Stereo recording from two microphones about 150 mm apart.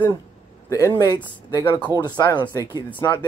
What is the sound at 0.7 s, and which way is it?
Speech, 20° left (ahead or behind).